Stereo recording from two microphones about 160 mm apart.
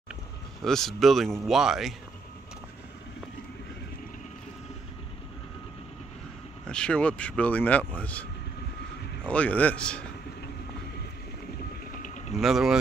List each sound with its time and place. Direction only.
0.6 s speech: centre (ahead or behind)
6.7 s speech: 5° left (ahead or behind)
11.9 s mechanisms: 55° left (ahead or behind)
12.4 s speech: centre (ahead or behind)